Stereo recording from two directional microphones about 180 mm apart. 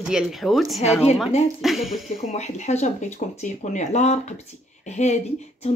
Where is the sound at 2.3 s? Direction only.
40° left (ahead or behind).